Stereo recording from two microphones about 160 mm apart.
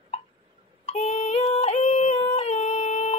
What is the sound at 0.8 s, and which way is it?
Female singing, 45° left (ahead or behind).